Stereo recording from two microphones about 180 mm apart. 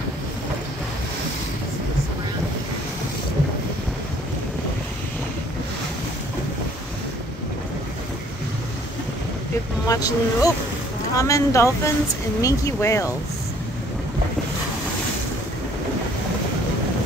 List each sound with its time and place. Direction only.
9.8 s speech: 20° left (ahead or behind)